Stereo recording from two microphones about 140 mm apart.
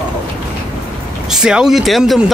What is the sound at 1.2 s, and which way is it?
Speech, 5° right (ahead or behind).